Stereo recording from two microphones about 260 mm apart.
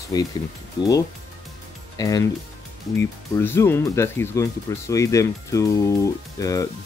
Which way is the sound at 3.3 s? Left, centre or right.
Centre.